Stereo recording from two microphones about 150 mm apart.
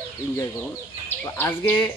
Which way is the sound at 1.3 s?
15° left (ahead or behind).